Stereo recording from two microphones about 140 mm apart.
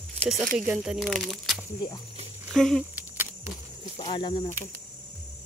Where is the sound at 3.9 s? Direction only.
40° left (ahead or behind).